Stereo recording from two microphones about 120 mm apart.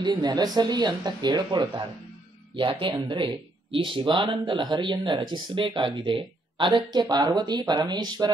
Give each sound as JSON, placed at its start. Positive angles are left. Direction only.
{"t": 0.0, "sound": "speech", "side_deg": -35}